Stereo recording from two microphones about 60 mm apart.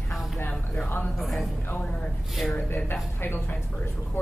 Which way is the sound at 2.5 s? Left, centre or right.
Left.